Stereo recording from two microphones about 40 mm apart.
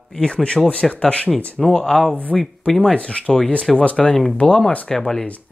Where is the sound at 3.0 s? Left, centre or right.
Left.